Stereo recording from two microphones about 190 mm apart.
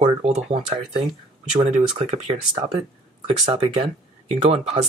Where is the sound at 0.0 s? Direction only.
30° right (ahead or behind).